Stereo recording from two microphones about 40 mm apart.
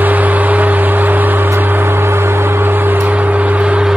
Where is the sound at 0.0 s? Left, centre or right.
Right.